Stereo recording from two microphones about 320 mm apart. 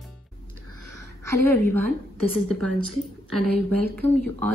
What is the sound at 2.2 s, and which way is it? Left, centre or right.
A woman's voice, right.